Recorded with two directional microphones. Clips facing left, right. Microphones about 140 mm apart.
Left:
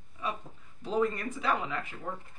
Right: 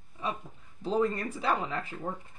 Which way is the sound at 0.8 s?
30° right (ahead or behind).